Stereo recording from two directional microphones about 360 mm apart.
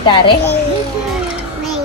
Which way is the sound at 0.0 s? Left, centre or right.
Centre.